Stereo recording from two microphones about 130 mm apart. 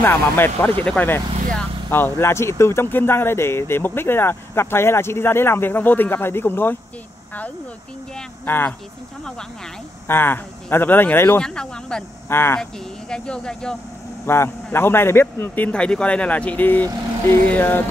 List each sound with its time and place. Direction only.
0.0 s speech: 15° left (ahead or behind)
8.5 s speech: 15° left (ahead or behind)
10.0 s speech: 15° left (ahead or behind)
12.3 s speech: 20° left (ahead or behind)
12.5 s speech: 5° left (ahead or behind)
14.2 s speech: 20° left (ahead or behind)